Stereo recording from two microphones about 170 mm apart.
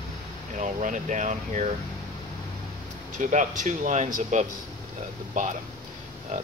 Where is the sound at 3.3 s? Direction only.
45° right (ahead or behind).